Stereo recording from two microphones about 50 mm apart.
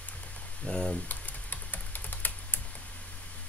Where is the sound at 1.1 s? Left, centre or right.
Left.